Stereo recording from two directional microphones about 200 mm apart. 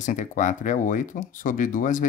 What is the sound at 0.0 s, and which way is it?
Speech, 40° left (ahead or behind).